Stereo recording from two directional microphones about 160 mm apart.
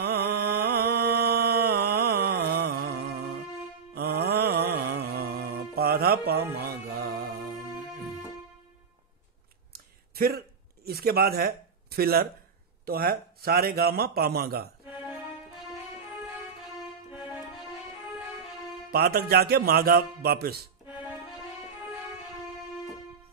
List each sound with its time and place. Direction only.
0.0 s music: 85° right
9.7 s a sound: 70° right (ahead or behind)
12.8 s a man's voice: 70° right (ahead or behind)
17.2 s music: 5° right (ahead or behind)
18.9 s a man's voice: 75° right (ahead or behind)